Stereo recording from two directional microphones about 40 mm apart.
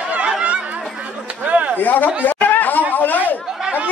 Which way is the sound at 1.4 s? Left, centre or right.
Right.